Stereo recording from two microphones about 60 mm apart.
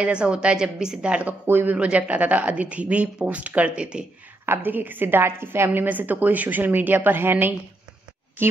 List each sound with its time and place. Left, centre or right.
0.0 s a woman's voice: centre
1.5 s a woman's voice: right
1.8 s speech: right
4.5 s a woman's voice: right
5.7 s a woman's voice: right